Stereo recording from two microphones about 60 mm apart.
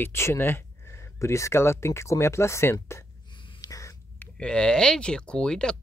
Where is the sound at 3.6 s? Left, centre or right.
Left.